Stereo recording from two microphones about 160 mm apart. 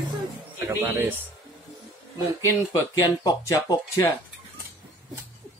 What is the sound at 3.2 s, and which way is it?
Speech, 20° left (ahead or behind).